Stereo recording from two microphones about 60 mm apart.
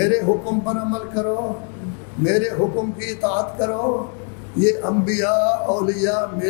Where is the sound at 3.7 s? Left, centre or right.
Left.